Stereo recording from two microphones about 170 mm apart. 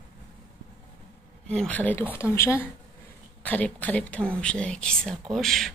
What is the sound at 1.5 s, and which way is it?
A woman's voice, 5° left (ahead or behind).